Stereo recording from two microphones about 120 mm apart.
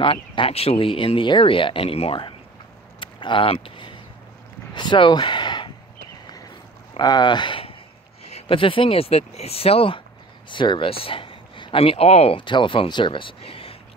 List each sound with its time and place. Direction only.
0.0 s speech: 50° left (ahead or behind)
3.0 s a sound: 45° left (ahead or behind)
4.7 s speech: 40° left (ahead or behind)
7.0 s speech: 40° left (ahead or behind)
8.2 s speech: 60° left (ahead or behind)
12.4 s speech: 45° left (ahead or behind)